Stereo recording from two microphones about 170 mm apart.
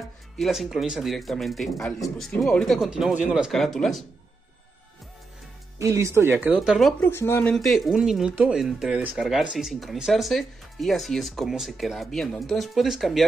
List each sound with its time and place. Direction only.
0.4 s speech: centre (ahead or behind)
5.8 s a woman's voice: 15° right (ahead or behind); by 7.0 s centre (ahead or behind)
7.0 s speech: 15° left (ahead or behind)
7.5 s speech: centre (ahead or behind)